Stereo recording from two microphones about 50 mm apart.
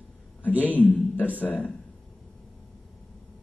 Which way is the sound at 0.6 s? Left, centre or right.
Left.